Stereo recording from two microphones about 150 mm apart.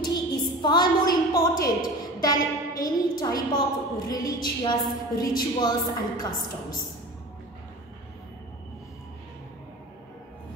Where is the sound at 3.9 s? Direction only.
25° left (ahead or behind).